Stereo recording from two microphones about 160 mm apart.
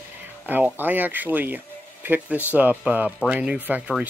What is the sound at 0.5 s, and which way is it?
Speech, 10° right (ahead or behind).